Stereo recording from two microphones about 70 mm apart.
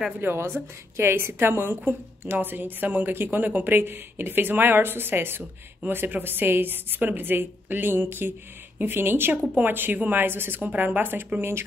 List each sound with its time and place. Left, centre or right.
0.2 s a woman's voice: right